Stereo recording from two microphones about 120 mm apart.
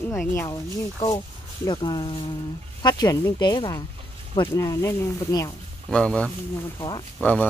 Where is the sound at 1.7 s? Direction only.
40° left (ahead or behind).